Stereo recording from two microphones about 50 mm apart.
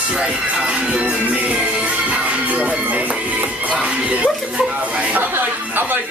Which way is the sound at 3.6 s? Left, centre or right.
Right.